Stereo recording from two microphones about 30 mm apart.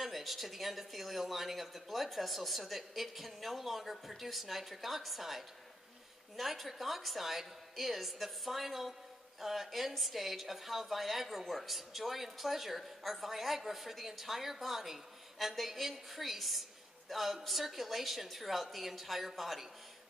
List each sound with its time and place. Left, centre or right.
0.0 s speech: centre